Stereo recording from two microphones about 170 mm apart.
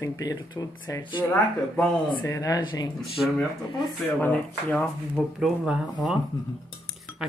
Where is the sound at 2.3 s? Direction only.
20° left (ahead or behind).